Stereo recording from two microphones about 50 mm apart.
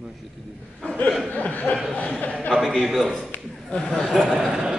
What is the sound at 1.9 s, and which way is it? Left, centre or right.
Speech, left.